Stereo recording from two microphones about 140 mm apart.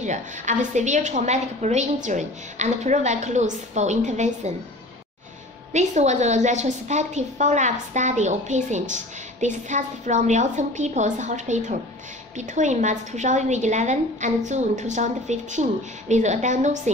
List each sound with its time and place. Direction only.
0.0 s a woman's voice: 60° right (ahead or behind)
5.7 s a woman's voice: 55° right (ahead or behind)